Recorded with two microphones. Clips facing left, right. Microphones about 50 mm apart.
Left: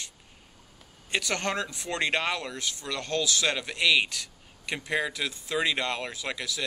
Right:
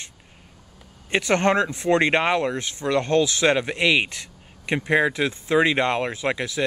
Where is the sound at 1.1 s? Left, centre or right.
Right.